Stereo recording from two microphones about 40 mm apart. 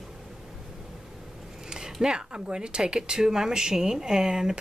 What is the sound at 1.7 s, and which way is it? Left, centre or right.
Speech, centre.